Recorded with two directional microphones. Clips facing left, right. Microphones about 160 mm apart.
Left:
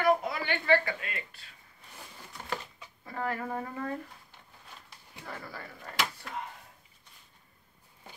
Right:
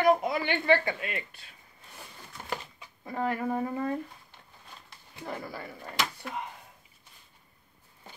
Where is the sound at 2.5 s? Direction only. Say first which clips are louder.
Right 1 dB; 15° right (ahead or behind).